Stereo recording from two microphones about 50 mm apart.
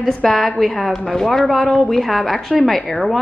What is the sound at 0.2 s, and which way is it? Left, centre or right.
Speech, centre.